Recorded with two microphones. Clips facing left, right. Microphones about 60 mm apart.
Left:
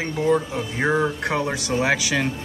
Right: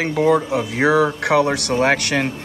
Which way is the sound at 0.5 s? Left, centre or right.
Right.